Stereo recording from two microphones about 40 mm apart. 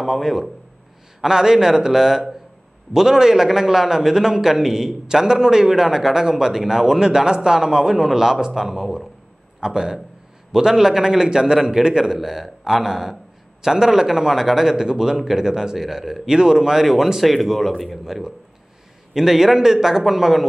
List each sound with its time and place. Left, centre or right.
0.0 s a man's voice: centre
12.2 s a man's voice: centre
19.1 s a man's voice: centre